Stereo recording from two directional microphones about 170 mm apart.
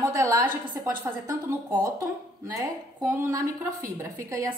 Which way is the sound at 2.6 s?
15° right (ahead or behind).